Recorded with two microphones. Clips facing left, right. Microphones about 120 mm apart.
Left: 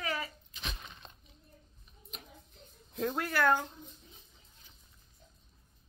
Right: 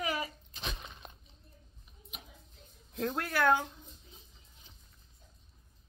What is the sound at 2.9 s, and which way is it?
Speech, centre (ahead or behind).